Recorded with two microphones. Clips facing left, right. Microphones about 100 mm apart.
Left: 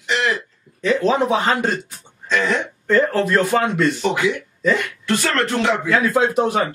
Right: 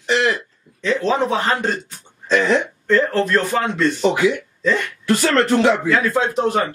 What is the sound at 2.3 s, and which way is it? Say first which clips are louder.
Speech: right 3 dB; 25° right (ahead or behind).